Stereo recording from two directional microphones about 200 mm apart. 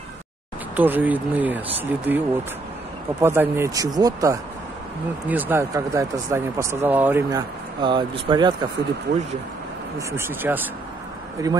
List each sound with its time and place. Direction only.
0.7 s speech: 10° right (ahead or behind)
9.9 s speech: 10° right (ahead or behind)